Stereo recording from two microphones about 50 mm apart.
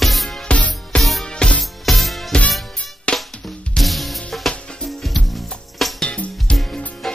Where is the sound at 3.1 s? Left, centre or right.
Left.